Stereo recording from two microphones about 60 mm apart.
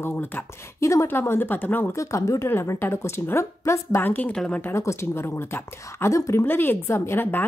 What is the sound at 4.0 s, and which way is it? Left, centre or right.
Speech, left.